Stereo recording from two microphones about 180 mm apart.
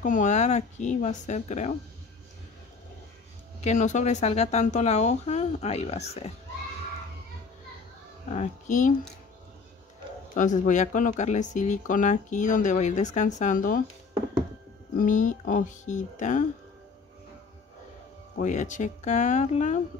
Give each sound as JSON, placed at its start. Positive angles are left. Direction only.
{"t": 0.0, "sound": "speech", "side_deg": 45}
{"t": 3.6, "sound": "speech", "side_deg": 40}
{"t": 8.3, "sound": "speech", "side_deg": 40}
{"t": 10.3, "sound": "speech", "side_deg": 45}
{"t": 15.0, "sound": "speech", "side_deg": 45}
{"t": 18.4, "sound": "speech", "side_deg": 45}